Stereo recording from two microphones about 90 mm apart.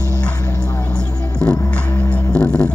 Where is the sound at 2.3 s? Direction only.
15° left (ahead or behind).